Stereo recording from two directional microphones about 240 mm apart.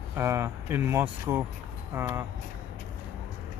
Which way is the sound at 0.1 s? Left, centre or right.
Centre.